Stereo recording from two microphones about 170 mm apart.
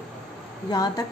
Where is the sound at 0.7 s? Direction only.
25° left (ahead or behind).